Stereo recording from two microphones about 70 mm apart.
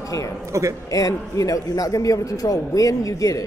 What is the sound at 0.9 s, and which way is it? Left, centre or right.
A man's voice, left.